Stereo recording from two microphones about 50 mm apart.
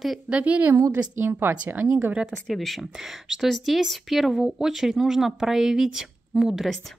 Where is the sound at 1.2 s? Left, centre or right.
Right.